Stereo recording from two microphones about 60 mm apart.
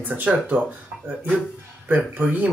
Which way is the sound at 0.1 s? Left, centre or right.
Right.